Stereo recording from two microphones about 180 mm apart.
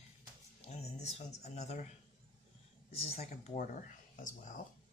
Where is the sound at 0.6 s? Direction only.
35° left (ahead or behind).